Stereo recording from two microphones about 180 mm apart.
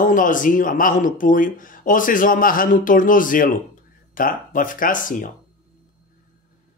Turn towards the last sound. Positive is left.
turn(degrees=50)  # may be behind; listen again after turning